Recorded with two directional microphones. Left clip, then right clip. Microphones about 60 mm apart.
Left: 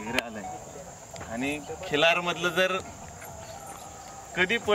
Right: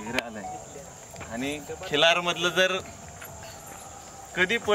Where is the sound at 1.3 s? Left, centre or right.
Centre.